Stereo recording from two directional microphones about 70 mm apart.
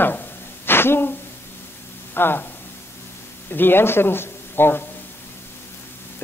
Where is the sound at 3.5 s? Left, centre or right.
Left.